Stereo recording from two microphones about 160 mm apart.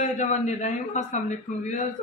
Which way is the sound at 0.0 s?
45° left (ahead or behind).